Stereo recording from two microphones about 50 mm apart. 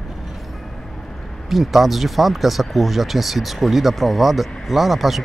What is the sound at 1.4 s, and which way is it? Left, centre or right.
Speech, centre.